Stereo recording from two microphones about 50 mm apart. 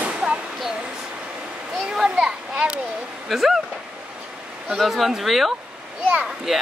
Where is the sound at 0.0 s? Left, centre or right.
Right.